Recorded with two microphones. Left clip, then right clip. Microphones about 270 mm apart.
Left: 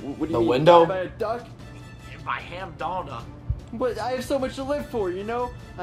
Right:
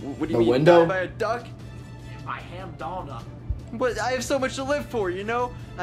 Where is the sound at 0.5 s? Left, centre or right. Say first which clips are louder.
Left 2 dB; centre.